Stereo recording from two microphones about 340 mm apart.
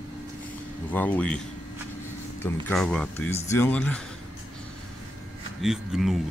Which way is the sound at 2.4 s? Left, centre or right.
Centre.